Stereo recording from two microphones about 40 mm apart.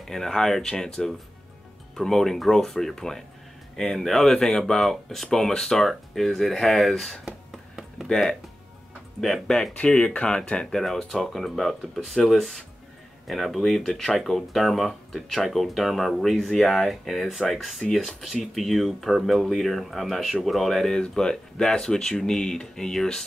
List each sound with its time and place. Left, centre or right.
0.1 s speech: centre
5.9 s speech: centre
9.8 s speech: left
10.7 s speech: centre